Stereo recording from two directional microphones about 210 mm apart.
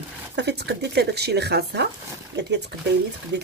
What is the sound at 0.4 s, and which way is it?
Speech, 55° right (ahead or behind).